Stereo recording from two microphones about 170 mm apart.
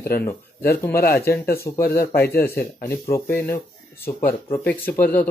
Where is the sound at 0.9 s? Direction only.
60° left (ahead or behind).